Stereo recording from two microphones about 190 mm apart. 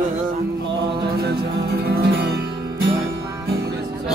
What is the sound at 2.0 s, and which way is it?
Music, 60° right (ahead or behind).